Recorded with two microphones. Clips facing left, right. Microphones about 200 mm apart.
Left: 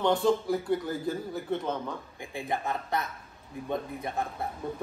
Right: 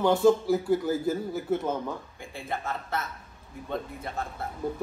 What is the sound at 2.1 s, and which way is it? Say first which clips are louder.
A woman's voice: left 2 dB; 15° left (ahead or behind).